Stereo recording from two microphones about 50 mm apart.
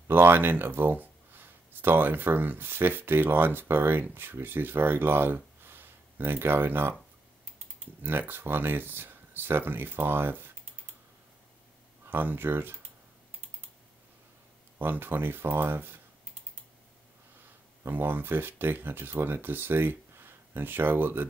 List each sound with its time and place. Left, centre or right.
0.1 s speech: right
8.0 s speech: right
12.1 s speech: right
14.8 s speech: right
17.8 s speech: right